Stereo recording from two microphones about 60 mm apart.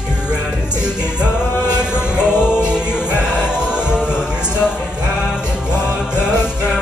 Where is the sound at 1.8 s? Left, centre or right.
Centre.